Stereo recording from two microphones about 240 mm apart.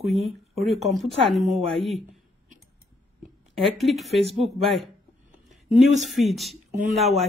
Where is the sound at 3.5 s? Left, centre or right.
Centre.